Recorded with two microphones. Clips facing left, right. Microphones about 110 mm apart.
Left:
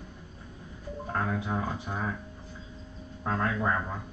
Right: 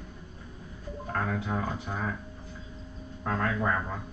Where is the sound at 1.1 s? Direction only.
20° left (ahead or behind).